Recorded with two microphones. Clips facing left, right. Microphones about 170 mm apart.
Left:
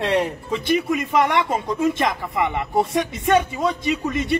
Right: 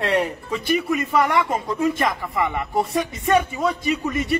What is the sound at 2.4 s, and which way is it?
Speech, 20° left (ahead or behind).